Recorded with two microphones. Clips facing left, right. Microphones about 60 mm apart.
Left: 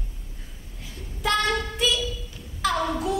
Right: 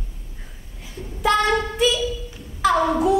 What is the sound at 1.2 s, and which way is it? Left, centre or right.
Child singing, centre.